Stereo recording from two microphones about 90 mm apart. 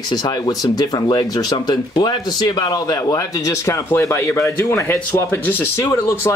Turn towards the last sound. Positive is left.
turn(degrees=25)  # may be behind; listen again after turning